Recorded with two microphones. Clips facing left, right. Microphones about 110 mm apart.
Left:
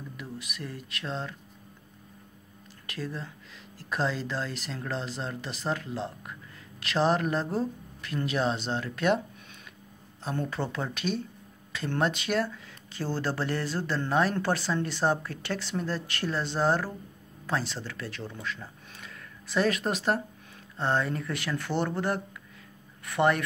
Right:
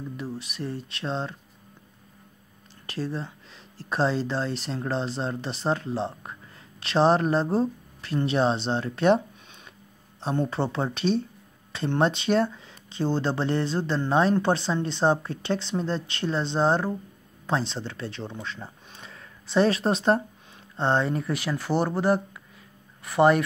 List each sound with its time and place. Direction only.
0.2 s speech: 30° right (ahead or behind)
2.9 s speech: 30° right (ahead or behind)
10.2 s speech: 25° right (ahead or behind)